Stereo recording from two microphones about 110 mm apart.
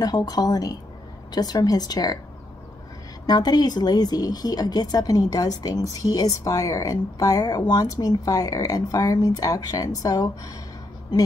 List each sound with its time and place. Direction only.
0.0 s speech: 35° left (ahead or behind)
3.3 s speech: 35° left (ahead or behind)